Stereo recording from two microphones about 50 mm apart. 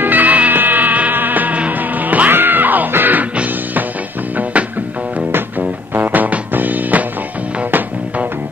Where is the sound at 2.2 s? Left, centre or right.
Right.